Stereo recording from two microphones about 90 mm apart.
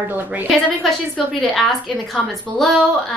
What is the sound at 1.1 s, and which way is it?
Speech, 5° left (ahead or behind).